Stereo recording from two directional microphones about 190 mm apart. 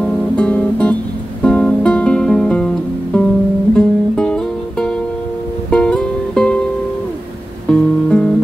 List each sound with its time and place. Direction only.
0.0 s guitar: 5° left (ahead or behind)
1.4 s music: 5° left (ahead or behind)
7.7 s music: 5° left (ahead or behind)